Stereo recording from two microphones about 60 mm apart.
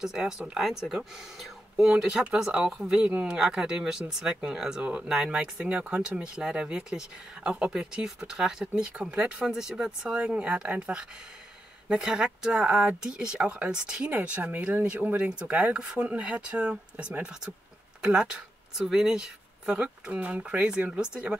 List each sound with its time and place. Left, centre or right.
0.0 s speech: centre
20.1 s speech: right